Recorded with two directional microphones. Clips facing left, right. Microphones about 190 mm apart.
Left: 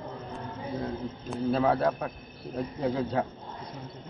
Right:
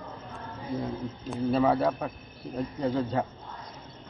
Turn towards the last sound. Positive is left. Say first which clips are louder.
# even
turn(degrees=0)  # may be behind; listen again after turning